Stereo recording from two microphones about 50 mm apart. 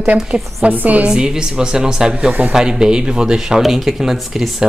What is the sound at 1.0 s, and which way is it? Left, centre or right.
Speech, centre.